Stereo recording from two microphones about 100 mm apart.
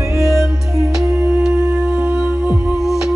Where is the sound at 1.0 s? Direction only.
30° right (ahead or behind).